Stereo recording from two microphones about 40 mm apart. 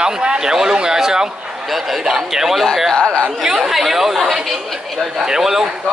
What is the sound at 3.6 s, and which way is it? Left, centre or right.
A man's voice, centre.